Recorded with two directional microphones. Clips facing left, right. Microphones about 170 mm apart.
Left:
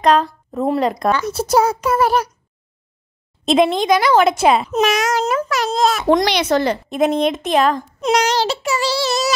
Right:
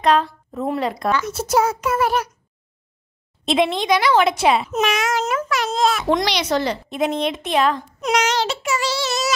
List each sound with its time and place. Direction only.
0.0 s a woman's voice: 40° left (ahead or behind)
3.4 s a woman's voice: 45° left (ahead or behind)
8.0 s child singing: 35° left (ahead or behind)